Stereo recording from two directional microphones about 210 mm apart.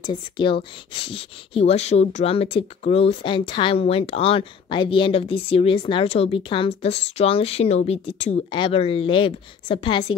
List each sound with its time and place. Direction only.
0.0 s speech: 20° left (ahead or behind)